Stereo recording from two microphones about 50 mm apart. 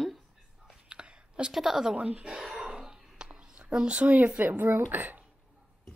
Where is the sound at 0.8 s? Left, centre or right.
Centre.